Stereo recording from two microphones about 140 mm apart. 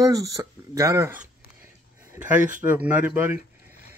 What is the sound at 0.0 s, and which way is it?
Speech, 25° right (ahead or behind).